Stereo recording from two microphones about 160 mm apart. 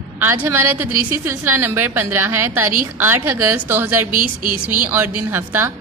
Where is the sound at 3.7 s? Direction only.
15° right (ahead or behind).